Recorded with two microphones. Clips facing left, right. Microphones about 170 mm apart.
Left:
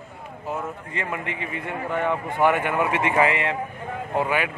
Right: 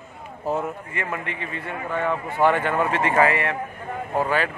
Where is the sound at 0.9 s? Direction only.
20° left (ahead or behind).